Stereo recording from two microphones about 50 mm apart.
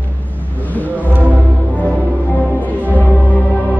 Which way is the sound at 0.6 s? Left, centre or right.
Left.